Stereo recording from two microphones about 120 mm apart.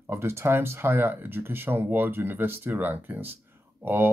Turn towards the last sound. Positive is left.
turn(degrees=-20)  # may be behind; listen again after turning